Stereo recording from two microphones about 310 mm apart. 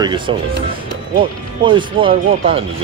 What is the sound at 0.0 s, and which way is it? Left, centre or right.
Speech, centre.